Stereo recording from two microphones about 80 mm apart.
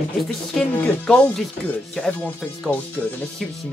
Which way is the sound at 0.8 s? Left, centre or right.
Centre.